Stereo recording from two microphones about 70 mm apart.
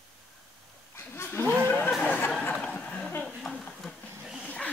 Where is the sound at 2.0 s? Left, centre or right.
Left.